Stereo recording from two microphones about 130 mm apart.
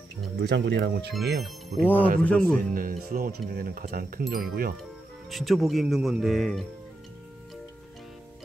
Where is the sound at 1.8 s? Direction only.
15° left (ahead or behind).